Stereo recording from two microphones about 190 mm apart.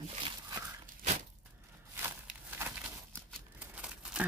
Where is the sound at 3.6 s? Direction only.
5° right (ahead or behind).